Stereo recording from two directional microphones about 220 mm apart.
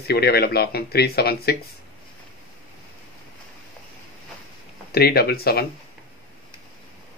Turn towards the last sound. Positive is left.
turn(degrees=45)  # may be behind; listen again after turning